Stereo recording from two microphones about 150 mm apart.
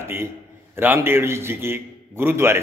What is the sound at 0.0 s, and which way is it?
A man's voice, 15° right (ahead or behind).